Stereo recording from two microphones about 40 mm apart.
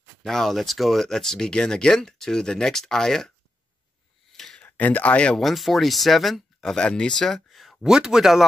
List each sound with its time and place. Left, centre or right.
0.2 s speech: centre
1.5 s speech: centre
4.3 s a sound: centre
4.7 s speech: left
5.4 s speech: centre
6.7 s speech: left
7.2 s a sound: centre
7.8 s speech: centre